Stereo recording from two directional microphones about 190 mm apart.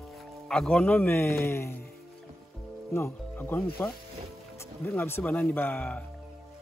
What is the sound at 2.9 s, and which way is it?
A man's voice, 10° left (ahead or behind).